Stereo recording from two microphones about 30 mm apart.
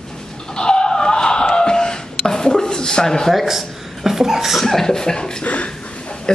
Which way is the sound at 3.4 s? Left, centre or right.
Centre.